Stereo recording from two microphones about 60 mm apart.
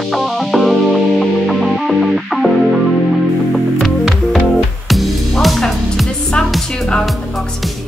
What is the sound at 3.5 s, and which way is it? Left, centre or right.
Music, centre.